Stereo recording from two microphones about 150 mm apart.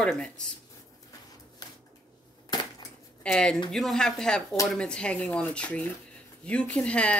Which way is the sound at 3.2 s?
5° left (ahead or behind).